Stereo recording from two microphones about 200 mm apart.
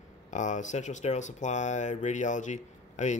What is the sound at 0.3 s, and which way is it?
Speech, 35° left (ahead or behind).